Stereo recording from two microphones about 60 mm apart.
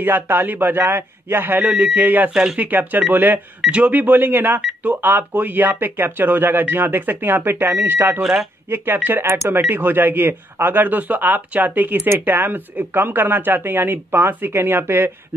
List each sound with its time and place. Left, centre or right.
0.0 s speech: right
1.7 s speech: right
2.3 s speech: centre
2.6 s speech: right
3.6 s speech: right
8.2 s speech: centre
8.6 s speech: right